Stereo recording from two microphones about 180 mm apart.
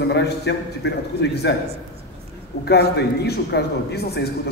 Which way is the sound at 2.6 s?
65° left (ahead or behind).